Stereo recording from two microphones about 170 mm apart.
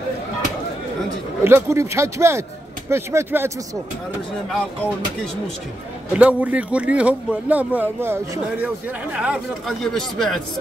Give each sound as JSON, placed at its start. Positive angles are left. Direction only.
{"t": 1.4, "sound": "speech", "side_deg": -15}
{"t": 6.1, "sound": "speech", "side_deg": -10}